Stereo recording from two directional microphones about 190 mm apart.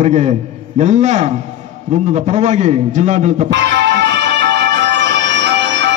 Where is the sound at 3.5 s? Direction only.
70° right (ahead or behind).